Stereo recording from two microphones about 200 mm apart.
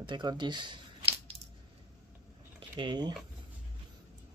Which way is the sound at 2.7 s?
20° right (ahead or behind).